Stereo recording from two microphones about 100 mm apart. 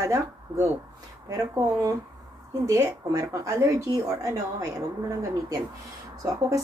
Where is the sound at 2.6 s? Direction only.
30° right (ahead or behind).